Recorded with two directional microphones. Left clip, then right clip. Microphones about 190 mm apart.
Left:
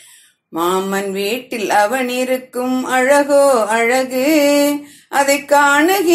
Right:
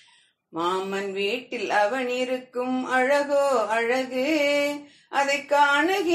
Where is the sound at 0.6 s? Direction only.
50° left (ahead or behind).